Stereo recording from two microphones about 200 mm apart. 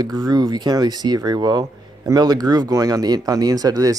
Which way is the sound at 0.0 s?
20° right (ahead or behind).